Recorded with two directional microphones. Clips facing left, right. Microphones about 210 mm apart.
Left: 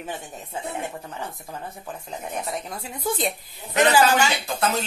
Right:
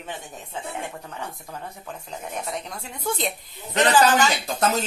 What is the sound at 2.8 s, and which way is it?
A woman's voice, 5° left (ahead or behind).